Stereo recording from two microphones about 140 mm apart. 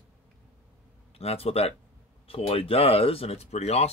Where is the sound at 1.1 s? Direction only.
45° left (ahead or behind).